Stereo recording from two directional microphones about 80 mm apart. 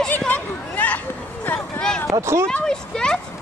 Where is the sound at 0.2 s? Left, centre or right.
Centre.